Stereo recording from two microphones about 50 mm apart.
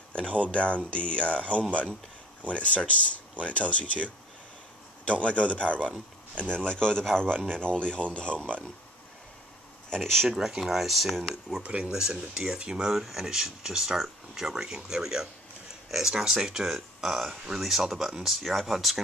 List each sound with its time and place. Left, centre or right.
0.5 s speech: left
5.2 s speech: left
9.8 s speech: centre
10.6 s speech: centre
11.6 s speech: right
11.9 s speech: centre